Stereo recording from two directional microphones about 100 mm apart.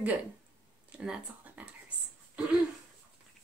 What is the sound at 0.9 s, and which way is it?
Speech, 10° right (ahead or behind).